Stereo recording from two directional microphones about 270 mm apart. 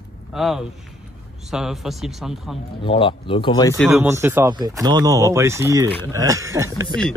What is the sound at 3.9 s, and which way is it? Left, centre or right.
Speech, centre.